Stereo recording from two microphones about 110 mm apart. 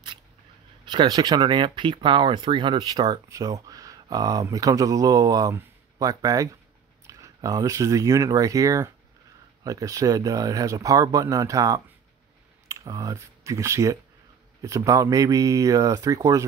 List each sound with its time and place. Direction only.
0.8 s speech: 40° right (ahead or behind)